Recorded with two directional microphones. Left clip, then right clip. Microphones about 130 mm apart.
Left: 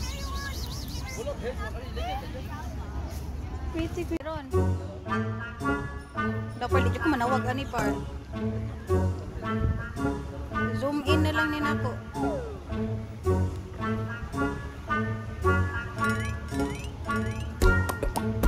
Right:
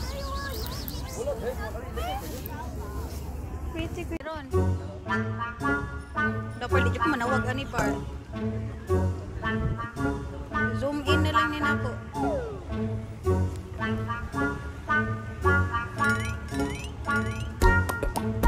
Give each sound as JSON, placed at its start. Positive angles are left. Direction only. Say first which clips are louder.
{"t": 3.7, "sound": "speech", "louder": "left 3 dB", "side_deg": 45}
{"t": 4.5, "sound": "speech", "louder": "right 1 dB", "side_deg": 0}
{"t": 5.6, "sound": "music", "louder": "right 1 dB", "side_deg": 0}
{"t": 6.6, "sound": "music", "louder": "right 1 dB", "side_deg": 30}
{"t": 7.7, "sound": "speech", "louder": "right 1 dB", "side_deg": 0}
{"t": 9.9, "sound": "music", "louder": "left 1 dB", "side_deg": 0}
{"t": 10.7, "sound": "music", "louder": "left 2 dB", "side_deg": 35}
{"t": 12.2, "sound": "music", "louder": "right 3 dB", "side_deg": 0}